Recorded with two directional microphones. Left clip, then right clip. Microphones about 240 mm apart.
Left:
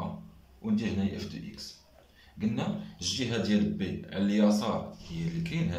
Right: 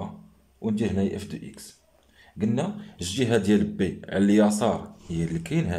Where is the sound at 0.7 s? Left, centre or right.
Right.